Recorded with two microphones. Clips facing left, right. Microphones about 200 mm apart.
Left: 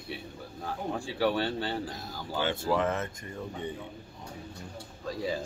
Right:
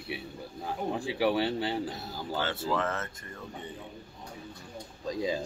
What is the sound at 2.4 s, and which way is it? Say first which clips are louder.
Speech: left 3 dB; 15° left (ahead or behind).